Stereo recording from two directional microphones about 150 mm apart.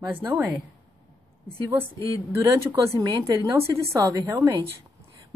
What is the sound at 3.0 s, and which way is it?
A woman's voice, 25° right (ahead or behind).